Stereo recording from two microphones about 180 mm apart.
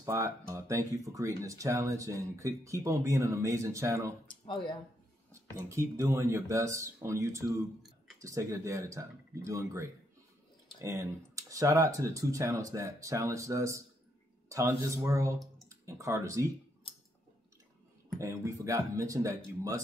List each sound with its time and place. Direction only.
0.0 s speech: 15° right (ahead or behind)
4.3 s speech: 25° left (ahead or behind)
5.3 s speech: 15° right (ahead or behind)
18.2 s speech: 15° right (ahead or behind)